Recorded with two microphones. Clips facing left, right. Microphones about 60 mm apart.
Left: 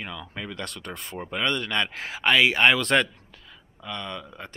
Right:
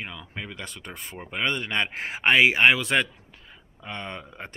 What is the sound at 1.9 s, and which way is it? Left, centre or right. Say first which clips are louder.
Speech: right 2 dB; right.